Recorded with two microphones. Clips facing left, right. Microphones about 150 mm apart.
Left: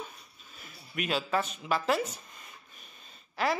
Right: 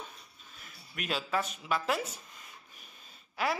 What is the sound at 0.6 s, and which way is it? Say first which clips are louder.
Speech: left 6 dB; centre (ahead or behind).